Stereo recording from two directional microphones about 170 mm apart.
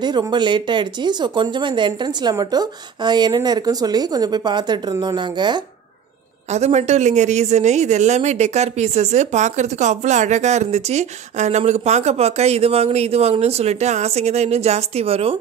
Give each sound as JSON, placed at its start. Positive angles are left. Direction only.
{"t": 0.0, "sound": "speech", "side_deg": -25}
{"t": 6.5, "sound": "speech", "side_deg": -40}